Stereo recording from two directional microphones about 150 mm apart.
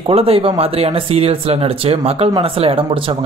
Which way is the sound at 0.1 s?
40° right (ahead or behind).